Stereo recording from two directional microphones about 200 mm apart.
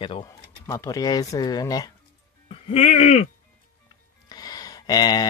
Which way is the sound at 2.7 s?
35° left (ahead or behind).